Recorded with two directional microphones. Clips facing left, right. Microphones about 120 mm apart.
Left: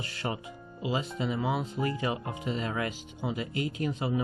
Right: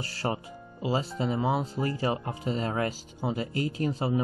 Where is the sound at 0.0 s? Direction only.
35° right (ahead or behind).